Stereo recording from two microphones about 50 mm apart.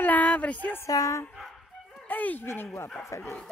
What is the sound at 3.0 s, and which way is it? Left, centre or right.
Speech, left.